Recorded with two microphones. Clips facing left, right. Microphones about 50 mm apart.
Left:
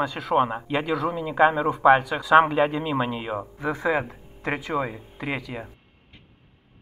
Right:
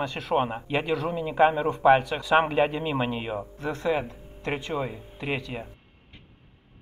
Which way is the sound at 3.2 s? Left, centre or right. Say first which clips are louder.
Left 3 dB; centre.